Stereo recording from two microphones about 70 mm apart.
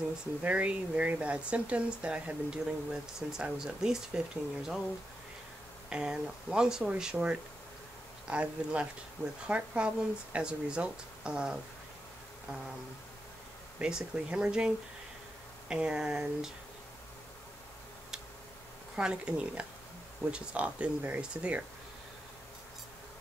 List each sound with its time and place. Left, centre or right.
0.4 s speech: centre
5.9 s speech: centre
13.7 s speech: centre
15.7 s speech: centre
18.9 s speech: centre